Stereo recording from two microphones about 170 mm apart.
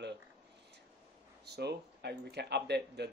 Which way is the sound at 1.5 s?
75° right (ahead or behind).